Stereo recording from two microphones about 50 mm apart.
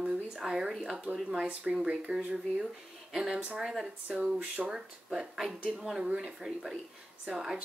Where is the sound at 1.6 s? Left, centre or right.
Right.